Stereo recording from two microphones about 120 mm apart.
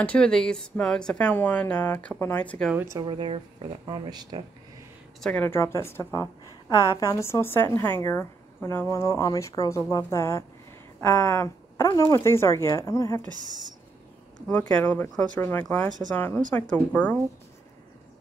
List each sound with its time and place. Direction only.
0.0 s speech: 10° left (ahead or behind)
2.9 s speech: 35° right (ahead or behind)
5.2 s speech: 10° left (ahead or behind)
14.8 s speech: 15° left (ahead or behind)